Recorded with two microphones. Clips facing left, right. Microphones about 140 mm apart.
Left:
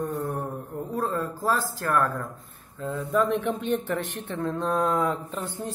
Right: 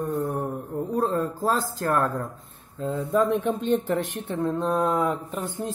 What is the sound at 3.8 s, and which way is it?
Speech, 40° right (ahead or behind).